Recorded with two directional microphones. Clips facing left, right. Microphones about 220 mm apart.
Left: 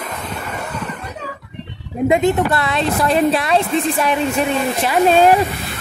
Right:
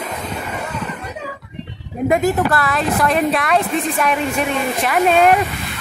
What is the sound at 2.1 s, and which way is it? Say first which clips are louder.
Speech: left 1 dB; 25° left (ahead or behind).